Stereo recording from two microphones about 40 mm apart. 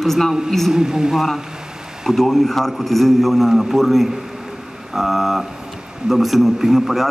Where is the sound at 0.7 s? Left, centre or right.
Centre.